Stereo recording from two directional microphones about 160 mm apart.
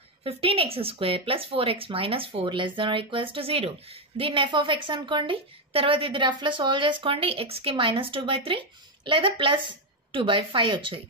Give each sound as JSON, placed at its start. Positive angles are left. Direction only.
{"t": 0.2, "sound": "speech", "side_deg": -35}